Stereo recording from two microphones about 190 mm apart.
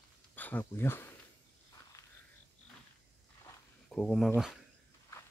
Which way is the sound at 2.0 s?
15° left (ahead or behind).